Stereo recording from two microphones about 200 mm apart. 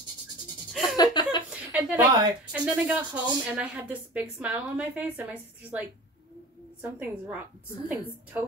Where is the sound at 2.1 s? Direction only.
20° right (ahead or behind).